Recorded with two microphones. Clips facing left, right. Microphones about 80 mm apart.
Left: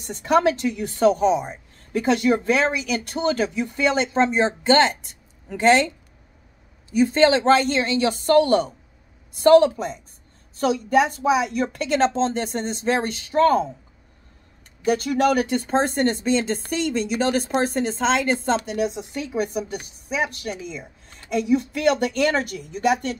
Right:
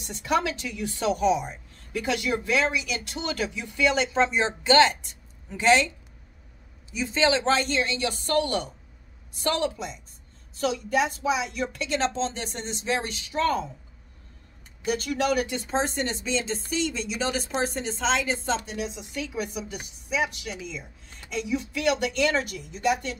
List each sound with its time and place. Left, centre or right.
0.0 s a woman's voice: left
6.9 s a woman's voice: left
14.9 s speech: left